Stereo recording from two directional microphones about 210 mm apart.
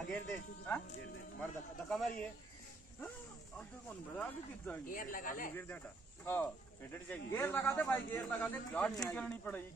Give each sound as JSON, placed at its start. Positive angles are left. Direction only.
{"t": 0.0, "sound": "speech", "side_deg": 5}
{"t": 4.2, "sound": "speech", "side_deg": 10}
{"t": 4.8, "sound": "speech", "side_deg": 40}
{"t": 5.5, "sound": "speech", "side_deg": 10}